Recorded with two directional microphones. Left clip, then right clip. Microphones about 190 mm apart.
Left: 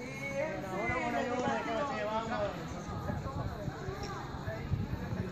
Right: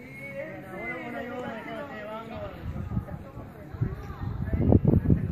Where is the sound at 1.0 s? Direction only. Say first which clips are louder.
Left 2 dB; 45° right (ahead or behind).